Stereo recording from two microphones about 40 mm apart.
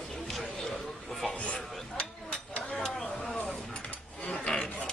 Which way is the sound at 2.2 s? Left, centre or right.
Left.